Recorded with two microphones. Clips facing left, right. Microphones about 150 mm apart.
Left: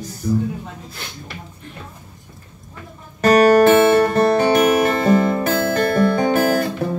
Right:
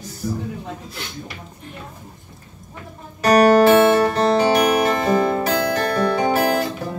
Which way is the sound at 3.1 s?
50° left (ahead or behind).